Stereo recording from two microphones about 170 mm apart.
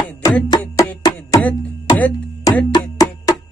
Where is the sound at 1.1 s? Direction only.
20° left (ahead or behind).